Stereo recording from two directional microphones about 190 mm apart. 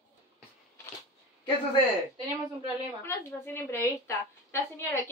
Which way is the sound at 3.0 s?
10° left (ahead or behind).